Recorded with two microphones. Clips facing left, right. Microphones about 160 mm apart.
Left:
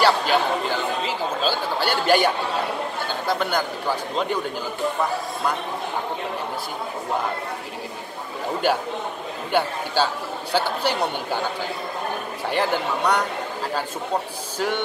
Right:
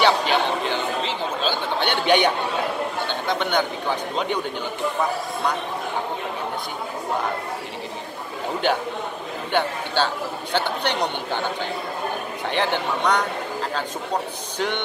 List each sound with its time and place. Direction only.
0.0 s a sound: 5° left (ahead or behind)
1.5 s speech: 5° left (ahead or behind)
8.6 s speech: 5° left (ahead or behind)
12.4 s speech: 5° left (ahead or behind)